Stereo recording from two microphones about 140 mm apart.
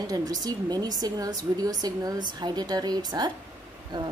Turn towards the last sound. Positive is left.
turn(degrees=-30)  # may be behind; listen again after turning